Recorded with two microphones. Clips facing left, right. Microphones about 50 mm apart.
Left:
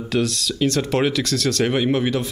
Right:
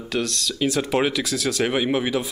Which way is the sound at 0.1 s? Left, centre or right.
Centre.